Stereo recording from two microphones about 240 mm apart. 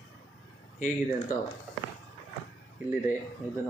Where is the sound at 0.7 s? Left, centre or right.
Left.